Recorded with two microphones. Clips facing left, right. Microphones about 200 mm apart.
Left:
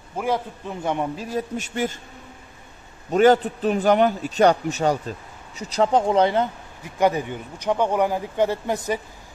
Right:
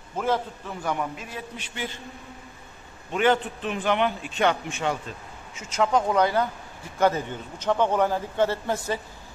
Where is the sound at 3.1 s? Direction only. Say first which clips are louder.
Left 7 dB; 40° left (ahead or behind); by 9.0 s 15° left (ahead or behind).